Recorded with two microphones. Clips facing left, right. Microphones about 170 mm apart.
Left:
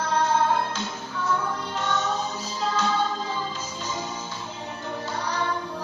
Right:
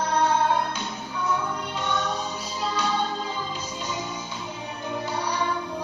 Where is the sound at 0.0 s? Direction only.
15° right (ahead or behind).